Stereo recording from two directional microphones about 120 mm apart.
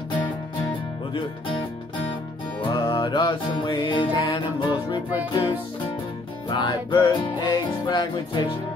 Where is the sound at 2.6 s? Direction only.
40° left (ahead or behind).